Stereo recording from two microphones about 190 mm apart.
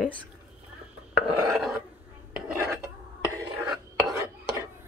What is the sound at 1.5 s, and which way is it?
Roar, centre (ahead or behind).